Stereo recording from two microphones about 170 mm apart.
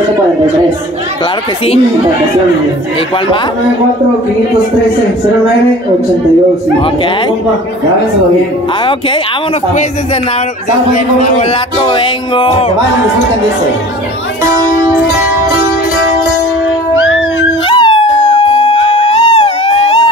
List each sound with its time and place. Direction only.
11.8 s speech: 30° left (ahead or behind)
14.9 s music: 5° right (ahead or behind)
17.6 s dog: 30° left (ahead or behind)
19.3 s music: 35° left (ahead or behind)